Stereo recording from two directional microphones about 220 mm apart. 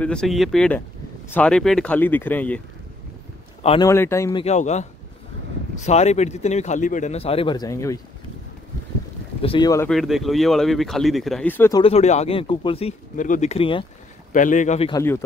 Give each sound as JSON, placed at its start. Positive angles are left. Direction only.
{"t": 0.0, "sound": "speech", "side_deg": 5}
{"t": 3.6, "sound": "speech", "side_deg": 25}
{"t": 3.9, "sound": "speech", "side_deg": 10}
{"t": 9.4, "sound": "speech", "side_deg": 20}
{"t": 9.8, "sound": "speech", "side_deg": 0}
{"t": 11.8, "sound": "speech", "side_deg": 30}
{"t": 14.3, "sound": "speech", "side_deg": 35}